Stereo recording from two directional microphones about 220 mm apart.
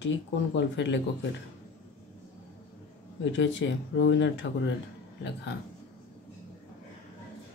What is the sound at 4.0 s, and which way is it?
Speech, 55° left (ahead or behind).